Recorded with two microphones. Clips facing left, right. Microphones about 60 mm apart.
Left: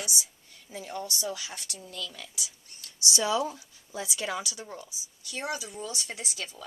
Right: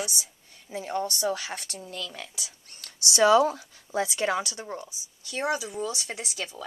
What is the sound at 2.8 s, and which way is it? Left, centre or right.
A woman's voice, right.